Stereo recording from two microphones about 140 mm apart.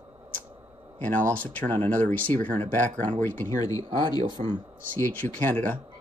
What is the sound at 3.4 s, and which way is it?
Speech, 25° left (ahead or behind).